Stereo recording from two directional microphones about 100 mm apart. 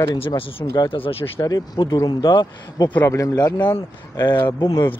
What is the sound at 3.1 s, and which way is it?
Speech, 35° left (ahead or behind).